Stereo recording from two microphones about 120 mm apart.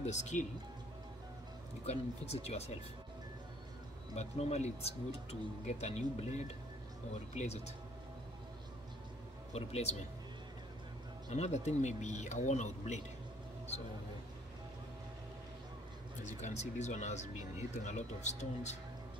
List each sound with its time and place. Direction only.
0.0 s speech: 75° left (ahead or behind)
1.9 s speech: 60° left (ahead or behind)
4.1 s speech: 70° left (ahead or behind)
9.5 s speech: 60° left (ahead or behind)
11.2 s speech: 70° left (ahead or behind)
16.3 s speech: 75° left (ahead or behind)